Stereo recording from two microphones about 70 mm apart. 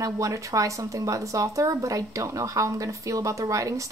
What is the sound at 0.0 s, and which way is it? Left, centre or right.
A woman's voice, right.